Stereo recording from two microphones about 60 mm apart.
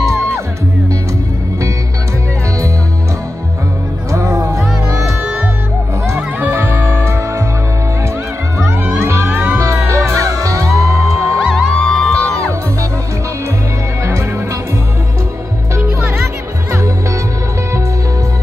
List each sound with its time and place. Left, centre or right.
4.3 s music: right
6.5 s music: right
9.0 s music: right
9.3 s music: right
9.6 s music: right
11.4 s music: centre